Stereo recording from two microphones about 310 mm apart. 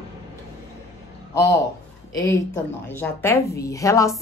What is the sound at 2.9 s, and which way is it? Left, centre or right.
A woman's voice, centre.